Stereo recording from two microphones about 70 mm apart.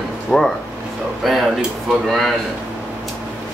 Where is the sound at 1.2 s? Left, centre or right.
Centre.